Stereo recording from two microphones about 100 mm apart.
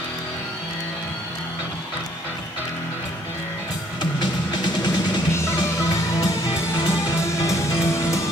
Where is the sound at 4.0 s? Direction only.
50° left (ahead or behind).